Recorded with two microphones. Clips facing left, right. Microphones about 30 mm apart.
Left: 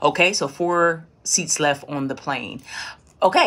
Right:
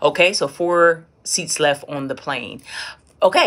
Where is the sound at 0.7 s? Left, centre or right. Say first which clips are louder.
Right 5 dB; centre.